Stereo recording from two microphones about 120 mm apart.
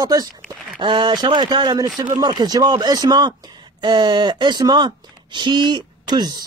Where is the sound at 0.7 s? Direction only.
45° right (ahead or behind).